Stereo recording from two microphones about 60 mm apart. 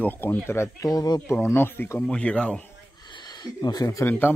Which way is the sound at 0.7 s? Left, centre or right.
Left.